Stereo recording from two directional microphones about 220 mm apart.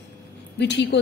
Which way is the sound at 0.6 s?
55° left (ahead or behind).